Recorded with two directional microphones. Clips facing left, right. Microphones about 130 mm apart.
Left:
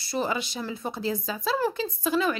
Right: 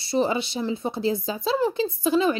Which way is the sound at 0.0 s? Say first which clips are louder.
Right 5 dB; 25° right (ahead or behind).